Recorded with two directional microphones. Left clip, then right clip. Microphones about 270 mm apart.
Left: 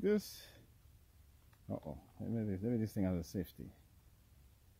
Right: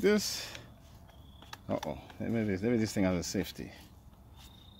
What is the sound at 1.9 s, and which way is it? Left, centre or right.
Speech, left.